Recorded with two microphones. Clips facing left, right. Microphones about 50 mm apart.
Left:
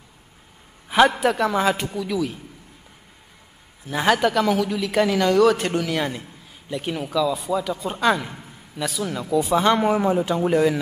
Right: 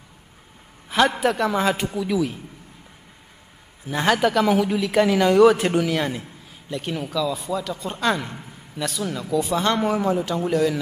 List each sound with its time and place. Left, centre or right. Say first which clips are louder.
0.8 s a sound: left 3 dB; centre
1.2 s a man's voice: left 1 dB; centre
3.8 s speech: even; centre
9.2 s speech: left 3 dB; centre